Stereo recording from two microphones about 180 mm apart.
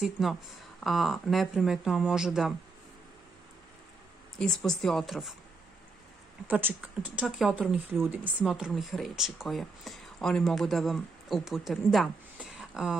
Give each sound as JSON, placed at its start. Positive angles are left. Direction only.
{"t": 0.0, "sound": "speech", "side_deg": 0}
{"t": 4.4, "sound": "speech", "side_deg": 5}
{"t": 6.4, "sound": "speech", "side_deg": -10}